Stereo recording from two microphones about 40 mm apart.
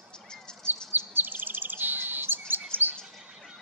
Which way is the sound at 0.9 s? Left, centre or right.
Right.